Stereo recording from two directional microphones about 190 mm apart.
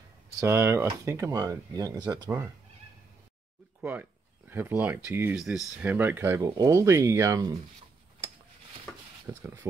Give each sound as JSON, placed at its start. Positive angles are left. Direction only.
{"t": 0.4, "sound": "speech", "side_deg": -10}
{"t": 3.8, "sound": "speech", "side_deg": -10}
{"t": 9.3, "sound": "speech", "side_deg": -15}